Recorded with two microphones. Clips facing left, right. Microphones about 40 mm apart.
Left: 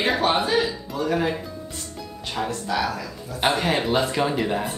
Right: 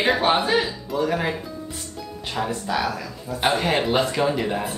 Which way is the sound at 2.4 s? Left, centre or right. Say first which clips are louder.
Even; centre.